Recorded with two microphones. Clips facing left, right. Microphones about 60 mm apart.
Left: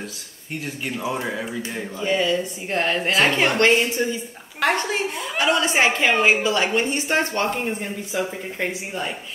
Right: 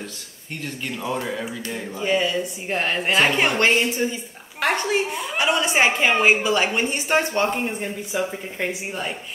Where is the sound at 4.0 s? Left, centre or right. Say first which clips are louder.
Left 1 dB; right.